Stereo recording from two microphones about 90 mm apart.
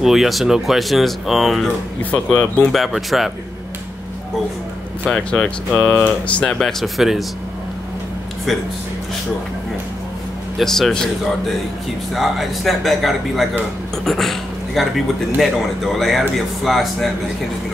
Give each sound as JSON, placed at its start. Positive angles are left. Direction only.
{"t": 0.0, "sound": "speech", "side_deg": -5}
{"t": 2.0, "sound": "speech", "side_deg": 15}
{"t": 2.7, "sound": "speech", "side_deg": 0}
{"t": 5.0, "sound": "speech", "side_deg": 15}
{"t": 6.6, "sound": "speech", "side_deg": 0}
{"t": 10.6, "sound": "a man's voice", "side_deg": 5}